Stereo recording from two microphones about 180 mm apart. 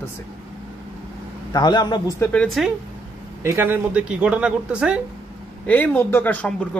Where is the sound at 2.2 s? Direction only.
5° left (ahead or behind).